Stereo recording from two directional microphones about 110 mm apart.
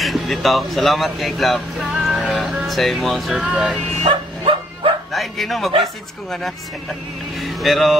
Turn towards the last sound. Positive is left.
turn(degrees=0)  # may be behind; listen again after turning